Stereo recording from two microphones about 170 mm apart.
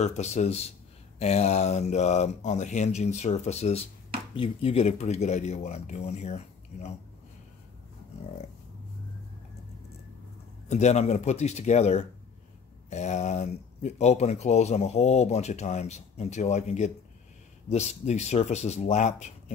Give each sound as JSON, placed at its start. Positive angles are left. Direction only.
{"t": 0.0, "sound": "speech", "side_deg": 40}
{"t": 10.7, "sound": "speech", "side_deg": 40}